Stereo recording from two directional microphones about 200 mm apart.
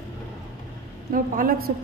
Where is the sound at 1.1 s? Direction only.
45° right (ahead or behind).